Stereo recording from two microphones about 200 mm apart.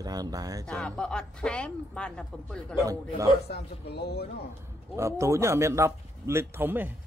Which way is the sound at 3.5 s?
55° left (ahead or behind).